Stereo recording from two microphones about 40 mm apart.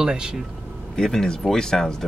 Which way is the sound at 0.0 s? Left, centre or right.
Right.